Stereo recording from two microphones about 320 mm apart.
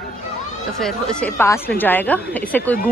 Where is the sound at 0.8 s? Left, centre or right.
Centre.